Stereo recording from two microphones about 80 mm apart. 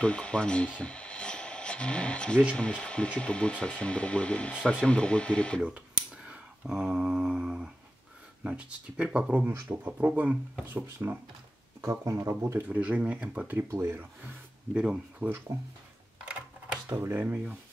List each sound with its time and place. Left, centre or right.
0.0 s speech: centre
0.7 s a sound: centre
2.5 s speech: centre
5.6 s speech: centre
11.8 s speech: right
12.6 s speech: centre
14.7 s speech: centre
15.1 s speech: right
16.3 s a sound: centre
16.9 s speech: right